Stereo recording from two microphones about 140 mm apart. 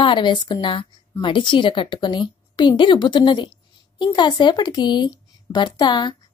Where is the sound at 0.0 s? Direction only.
35° left (ahead or behind).